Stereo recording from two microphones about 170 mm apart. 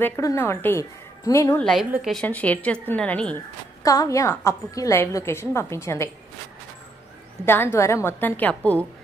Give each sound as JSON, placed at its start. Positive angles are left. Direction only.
{"t": 0.0, "sound": "a woman's voice", "side_deg": 15}
{"t": 1.6, "sound": "a woman's voice", "side_deg": 5}
{"t": 3.8, "sound": "a woman's voice", "side_deg": 20}
{"t": 7.4, "sound": "a woman's voice", "side_deg": 15}